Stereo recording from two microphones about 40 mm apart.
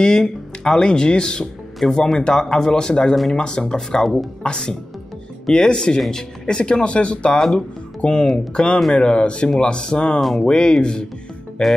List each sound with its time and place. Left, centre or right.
0.0 s speech: centre
4.4 s speech: centre
10.2 s speech: centre
10.5 s speech: centre